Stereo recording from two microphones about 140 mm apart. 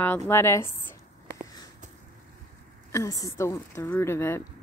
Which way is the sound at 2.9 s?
25° left (ahead or behind).